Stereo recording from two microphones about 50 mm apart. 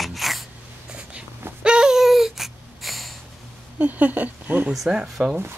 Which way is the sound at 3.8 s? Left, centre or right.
Right.